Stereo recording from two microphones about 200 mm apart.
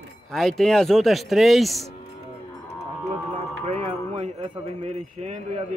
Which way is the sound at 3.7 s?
30° right (ahead or behind).